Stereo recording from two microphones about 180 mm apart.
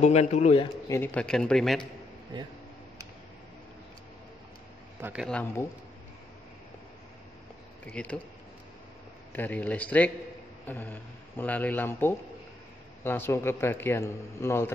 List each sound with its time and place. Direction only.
0.0 s a man's voice: 40° left (ahead or behind)
0.8 s a man's voice: 15° left (ahead or behind)
5.0 s a man's voice: 5° right (ahead or behind)
7.9 s a man's voice: 5° left (ahead or behind)
9.3 s a man's voice: 10° left (ahead or behind)